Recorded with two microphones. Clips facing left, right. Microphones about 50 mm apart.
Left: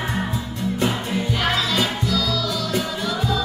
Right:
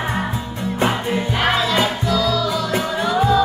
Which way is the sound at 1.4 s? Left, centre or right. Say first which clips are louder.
Right 5 dB; right.